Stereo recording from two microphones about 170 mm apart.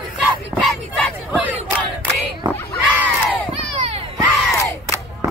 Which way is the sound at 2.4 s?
25° right (ahead or behind).